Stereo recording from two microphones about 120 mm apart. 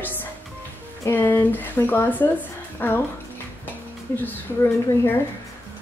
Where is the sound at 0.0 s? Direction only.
15° left (ahead or behind).